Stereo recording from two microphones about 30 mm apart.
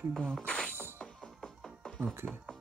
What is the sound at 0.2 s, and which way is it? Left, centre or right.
Speech, left.